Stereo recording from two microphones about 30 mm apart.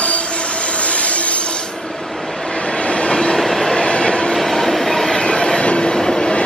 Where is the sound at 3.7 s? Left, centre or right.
Left.